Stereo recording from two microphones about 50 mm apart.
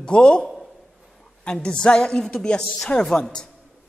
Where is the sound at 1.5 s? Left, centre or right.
Centre.